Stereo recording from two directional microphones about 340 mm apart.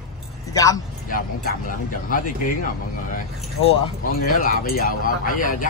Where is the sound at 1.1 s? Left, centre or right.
Left.